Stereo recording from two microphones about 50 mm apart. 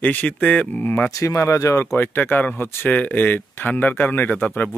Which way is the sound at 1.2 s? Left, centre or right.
Left.